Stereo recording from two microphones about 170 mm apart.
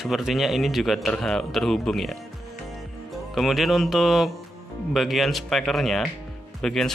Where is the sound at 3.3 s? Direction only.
Centre (ahead or behind).